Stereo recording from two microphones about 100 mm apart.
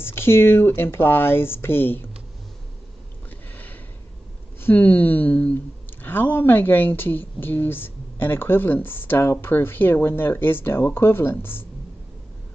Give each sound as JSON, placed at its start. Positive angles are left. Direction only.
{"t": 0.0, "sound": "speech", "side_deg": 25}
{"t": 3.3, "sound": "sniff", "side_deg": 15}
{"t": 4.6, "sound": "speech", "side_deg": 20}